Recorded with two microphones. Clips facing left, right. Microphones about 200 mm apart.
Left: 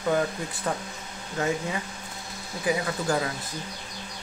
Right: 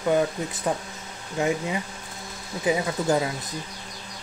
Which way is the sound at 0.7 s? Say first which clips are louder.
Right 3 dB; 20° right (ahead or behind).